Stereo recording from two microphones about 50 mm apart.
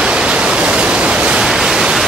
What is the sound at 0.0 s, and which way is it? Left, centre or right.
Pink noise, right.